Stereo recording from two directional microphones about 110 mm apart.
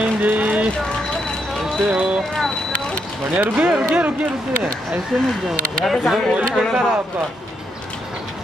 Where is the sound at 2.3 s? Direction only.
5° left (ahead or behind).